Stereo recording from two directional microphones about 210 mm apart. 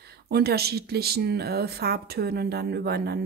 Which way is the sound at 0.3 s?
50° right (ahead or behind).